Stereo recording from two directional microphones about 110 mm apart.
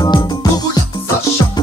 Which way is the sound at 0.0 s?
40° left (ahead or behind).